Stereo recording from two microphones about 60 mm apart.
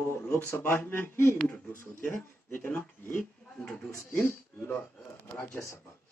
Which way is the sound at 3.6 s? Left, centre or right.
Left.